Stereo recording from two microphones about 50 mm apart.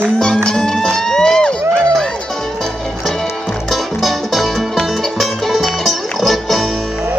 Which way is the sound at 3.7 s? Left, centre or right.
Centre.